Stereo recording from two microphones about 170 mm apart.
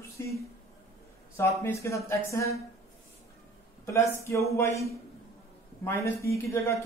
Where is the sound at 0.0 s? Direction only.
15° left (ahead or behind).